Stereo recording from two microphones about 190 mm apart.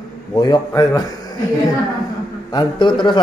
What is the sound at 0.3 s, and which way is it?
A man's voice, 20° left (ahead or behind).